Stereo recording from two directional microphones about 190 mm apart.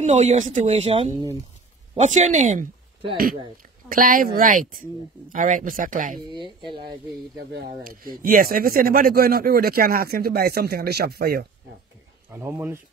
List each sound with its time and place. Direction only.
0.0 s speech: 35° right (ahead or behind)
3.9 s speech: 50° right (ahead or behind)
6.3 s speech: 25° right (ahead or behind)
7.8 s speech: 50° right (ahead or behind)
12.3 s speech: 10° right (ahead or behind)